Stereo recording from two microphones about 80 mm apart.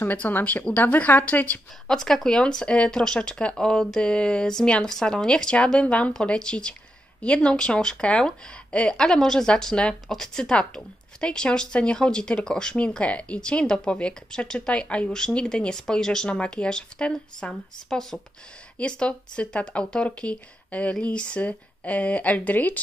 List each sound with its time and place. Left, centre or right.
0.0 s a woman's voice: left
1.9 s speech: centre